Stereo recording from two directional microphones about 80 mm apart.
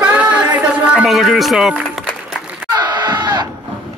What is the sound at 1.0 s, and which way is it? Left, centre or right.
Speech, centre.